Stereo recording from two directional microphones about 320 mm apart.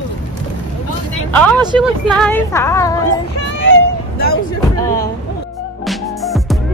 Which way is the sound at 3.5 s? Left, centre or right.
Left.